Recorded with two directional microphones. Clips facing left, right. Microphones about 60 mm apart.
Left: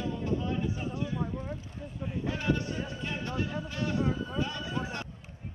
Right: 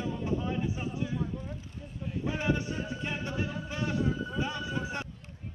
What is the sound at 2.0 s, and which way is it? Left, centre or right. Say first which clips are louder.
Speech: even; centre.